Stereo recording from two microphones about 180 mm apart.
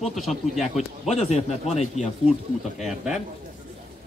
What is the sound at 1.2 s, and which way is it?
Speech, 35° left (ahead or behind).